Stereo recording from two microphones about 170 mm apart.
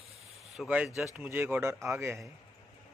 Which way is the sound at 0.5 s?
5° right (ahead or behind).